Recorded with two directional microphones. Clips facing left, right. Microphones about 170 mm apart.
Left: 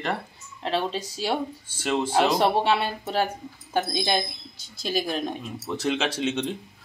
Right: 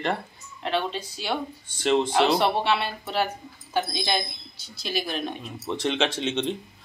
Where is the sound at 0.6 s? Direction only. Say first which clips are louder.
Left 1 dB; 35° left (ahead or behind).